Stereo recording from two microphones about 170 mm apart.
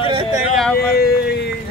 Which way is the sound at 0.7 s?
65° left (ahead or behind).